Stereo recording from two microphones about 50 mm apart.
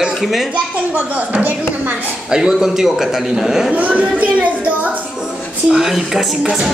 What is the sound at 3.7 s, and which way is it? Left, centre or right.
Speech, right.